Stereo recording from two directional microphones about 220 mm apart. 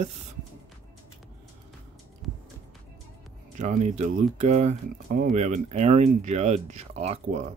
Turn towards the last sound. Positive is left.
turn(degrees=-30)  # may be behind; listen again after turning